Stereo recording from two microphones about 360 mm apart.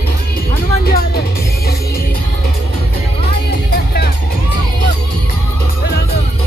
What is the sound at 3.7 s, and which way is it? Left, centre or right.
Music, left.